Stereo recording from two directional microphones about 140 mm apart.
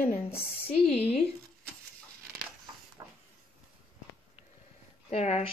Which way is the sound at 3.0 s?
25° right (ahead or behind).